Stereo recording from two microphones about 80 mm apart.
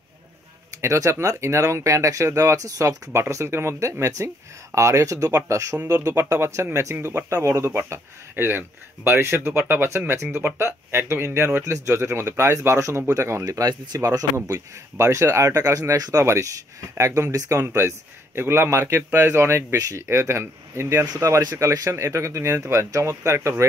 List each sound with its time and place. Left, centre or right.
0.7 s speech: right
13.5 s speech: right
21.0 s speech: right